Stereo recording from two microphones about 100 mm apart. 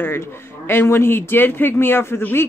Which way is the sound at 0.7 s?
25° left (ahead or behind).